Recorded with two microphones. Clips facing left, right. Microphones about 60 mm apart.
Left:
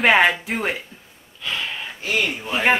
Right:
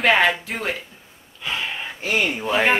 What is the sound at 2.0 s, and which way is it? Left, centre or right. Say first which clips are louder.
Speech: right 2 dB; right.